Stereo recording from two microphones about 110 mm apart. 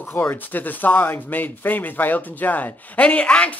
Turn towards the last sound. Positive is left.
turn(degrees=10)  # may be behind; listen again after turning